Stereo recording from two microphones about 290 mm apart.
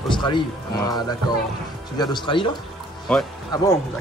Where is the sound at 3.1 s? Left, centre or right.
Centre.